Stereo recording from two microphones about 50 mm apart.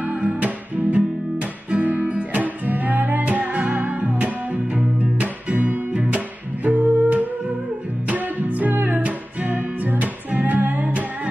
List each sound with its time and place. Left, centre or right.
0.0 s music: right
0.9 s guitar: right
8.1 s music: right